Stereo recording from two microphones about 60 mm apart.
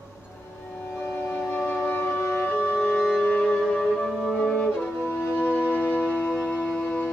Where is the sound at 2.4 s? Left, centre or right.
Left.